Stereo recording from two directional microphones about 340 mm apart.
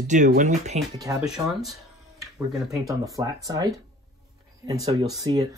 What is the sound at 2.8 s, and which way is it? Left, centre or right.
Speech, centre.